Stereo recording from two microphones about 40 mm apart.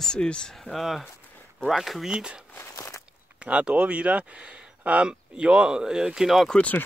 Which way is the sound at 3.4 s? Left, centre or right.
Right.